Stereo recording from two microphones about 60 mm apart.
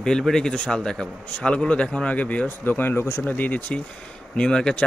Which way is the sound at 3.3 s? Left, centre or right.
Left.